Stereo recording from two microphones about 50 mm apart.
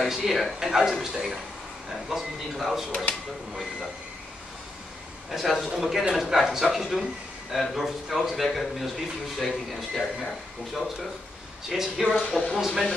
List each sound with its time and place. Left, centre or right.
0.1 s a man's voice: centre
5.3 s a man's voice: centre
12.3 s speech: left
12.5 s a man's voice: centre